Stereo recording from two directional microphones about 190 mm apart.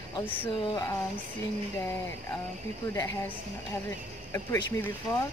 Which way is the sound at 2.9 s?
15° left (ahead or behind).